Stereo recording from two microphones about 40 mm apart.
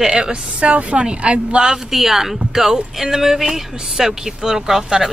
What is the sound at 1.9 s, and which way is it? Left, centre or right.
A woman's voice, centre.